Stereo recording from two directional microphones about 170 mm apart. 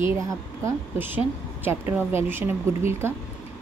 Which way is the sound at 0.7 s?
10° right (ahead or behind).